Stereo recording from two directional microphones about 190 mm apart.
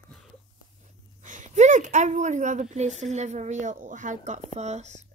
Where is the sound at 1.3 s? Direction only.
40° right (ahead or behind).